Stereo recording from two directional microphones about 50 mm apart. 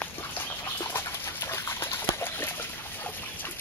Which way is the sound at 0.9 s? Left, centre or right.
Left.